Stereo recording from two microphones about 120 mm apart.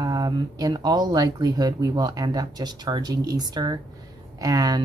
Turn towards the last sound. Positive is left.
turn(degrees=-30)  # may be behind; listen again after turning